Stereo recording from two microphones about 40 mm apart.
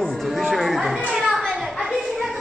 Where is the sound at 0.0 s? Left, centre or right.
Centre.